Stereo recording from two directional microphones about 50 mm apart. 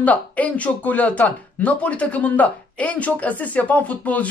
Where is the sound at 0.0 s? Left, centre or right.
Left.